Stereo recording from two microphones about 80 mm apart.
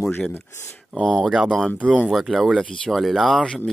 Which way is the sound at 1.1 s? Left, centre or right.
Centre.